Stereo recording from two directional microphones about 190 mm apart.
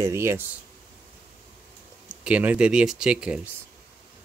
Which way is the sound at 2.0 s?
5° right (ahead or behind).